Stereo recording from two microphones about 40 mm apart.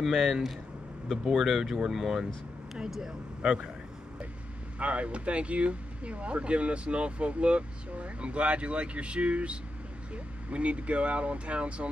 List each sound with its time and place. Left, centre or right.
0.1 s speech: centre
3.4 s speech: right
4.7 s speech: right